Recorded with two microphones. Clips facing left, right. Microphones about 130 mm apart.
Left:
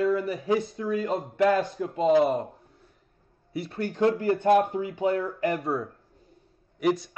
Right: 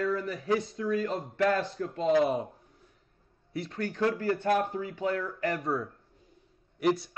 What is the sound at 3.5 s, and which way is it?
Speech, 5° left (ahead or behind).